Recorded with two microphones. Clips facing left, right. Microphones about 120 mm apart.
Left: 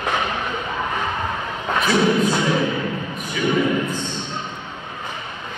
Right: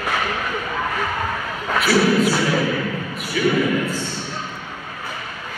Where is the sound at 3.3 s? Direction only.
20° left (ahead or behind).